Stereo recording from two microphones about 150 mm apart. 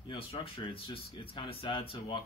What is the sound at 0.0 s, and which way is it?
Speech, 35° left (ahead or behind).